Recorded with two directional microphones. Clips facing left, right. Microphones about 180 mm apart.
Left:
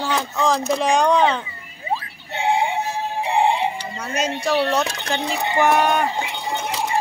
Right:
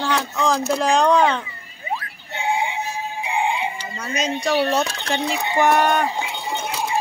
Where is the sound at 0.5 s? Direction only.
Centre (ahead or behind).